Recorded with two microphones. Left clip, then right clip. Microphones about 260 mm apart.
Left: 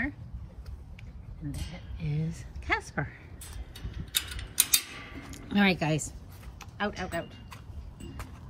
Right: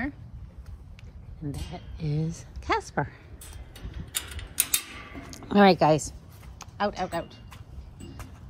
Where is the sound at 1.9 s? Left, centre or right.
Centre.